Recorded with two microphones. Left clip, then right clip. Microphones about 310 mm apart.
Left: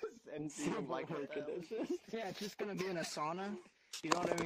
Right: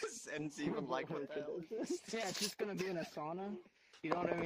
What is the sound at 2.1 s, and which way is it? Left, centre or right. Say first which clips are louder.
Speech: right 4 dB; centre.